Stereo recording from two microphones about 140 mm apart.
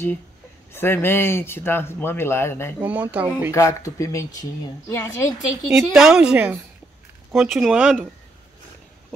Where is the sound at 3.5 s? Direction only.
25° left (ahead or behind).